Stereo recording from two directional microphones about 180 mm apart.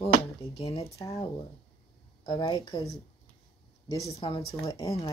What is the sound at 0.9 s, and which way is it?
Speech, 15° left (ahead or behind).